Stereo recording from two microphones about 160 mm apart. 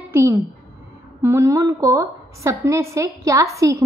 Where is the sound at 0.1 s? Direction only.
15° right (ahead or behind).